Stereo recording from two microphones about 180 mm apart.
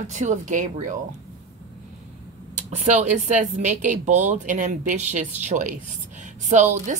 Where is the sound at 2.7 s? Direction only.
40° right (ahead or behind).